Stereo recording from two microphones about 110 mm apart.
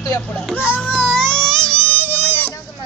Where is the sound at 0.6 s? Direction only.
20° left (ahead or behind).